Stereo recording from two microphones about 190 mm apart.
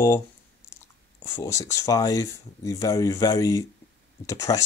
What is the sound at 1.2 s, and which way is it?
Speech, 15° left (ahead or behind).